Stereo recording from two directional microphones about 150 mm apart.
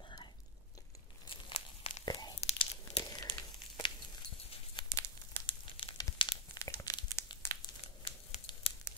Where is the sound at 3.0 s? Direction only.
30° left (ahead or behind).